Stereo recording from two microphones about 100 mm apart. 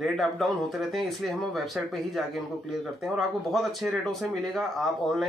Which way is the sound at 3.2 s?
Centre (ahead or behind).